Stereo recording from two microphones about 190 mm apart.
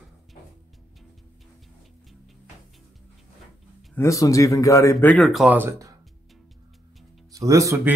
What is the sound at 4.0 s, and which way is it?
Speech, 15° left (ahead or behind).